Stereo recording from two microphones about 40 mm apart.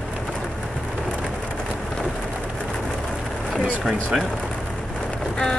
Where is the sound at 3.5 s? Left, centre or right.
Centre.